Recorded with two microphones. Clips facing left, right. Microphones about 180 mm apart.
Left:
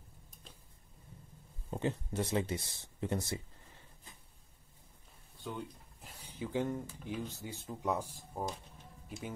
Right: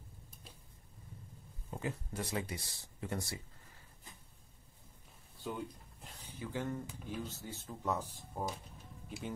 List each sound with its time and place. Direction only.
1.7 s speech: 25° left (ahead or behind)
5.4 s speech: centre (ahead or behind)